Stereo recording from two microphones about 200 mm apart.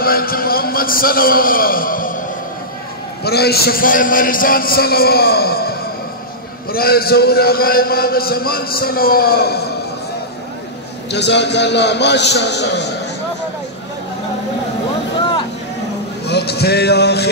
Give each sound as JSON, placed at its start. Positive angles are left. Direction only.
{"t": 0.0, "sound": "a man's voice", "side_deg": 50}
{"t": 3.3, "sound": "a man's voice", "side_deg": 55}
{"t": 11.1, "sound": "a man's voice", "side_deg": 60}
{"t": 16.3, "sound": "music", "side_deg": 55}